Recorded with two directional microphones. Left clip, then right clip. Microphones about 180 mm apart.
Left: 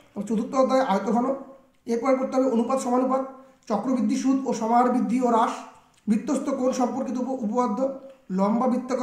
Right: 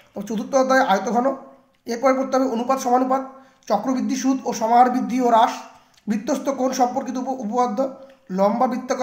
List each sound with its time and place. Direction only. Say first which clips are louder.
0.1 s a woman's voice: right 6 dB; 30° right (ahead or behind)